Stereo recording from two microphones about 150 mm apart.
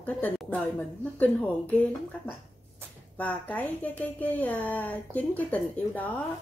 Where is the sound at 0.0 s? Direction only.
10° left (ahead or behind).